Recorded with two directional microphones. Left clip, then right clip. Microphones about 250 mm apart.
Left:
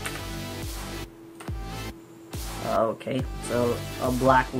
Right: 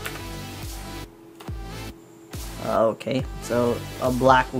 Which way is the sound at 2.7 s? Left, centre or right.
Right.